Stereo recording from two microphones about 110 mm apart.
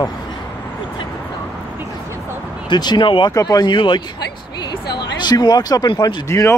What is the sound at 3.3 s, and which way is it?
Speech, 35° left (ahead or behind).